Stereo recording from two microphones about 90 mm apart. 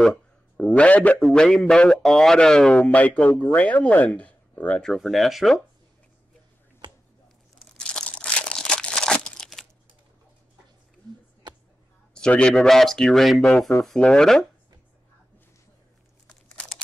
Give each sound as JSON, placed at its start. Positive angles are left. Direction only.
{"t": 0.0, "sound": "speech", "side_deg": 10}
{"t": 2.9, "sound": "speech", "side_deg": 15}
{"t": 4.8, "sound": "speech", "side_deg": 0}
{"t": 7.8, "sound": "crumpling", "side_deg": 10}
{"t": 12.1, "sound": "speech", "side_deg": 10}
{"t": 16.3, "sound": "crumpling", "side_deg": 10}